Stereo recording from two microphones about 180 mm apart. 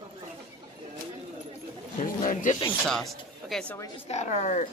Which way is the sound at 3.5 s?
5° left (ahead or behind).